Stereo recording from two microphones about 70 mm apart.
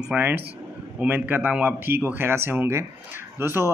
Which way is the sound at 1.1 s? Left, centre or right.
Right.